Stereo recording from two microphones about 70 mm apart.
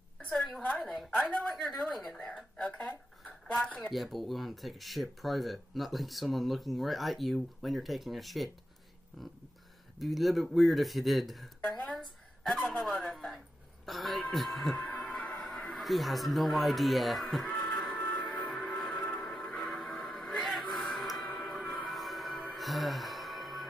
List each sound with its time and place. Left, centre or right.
0.6 s a woman's voice: centre
1.5 s speech: centre
2.5 s a sound: centre
3.9 s speech: centre
13.0 s a sound: centre
14.8 s music: left
15.8 s speech: centre
17.6 s music: centre
18.0 s music: centre
18.9 s music: centre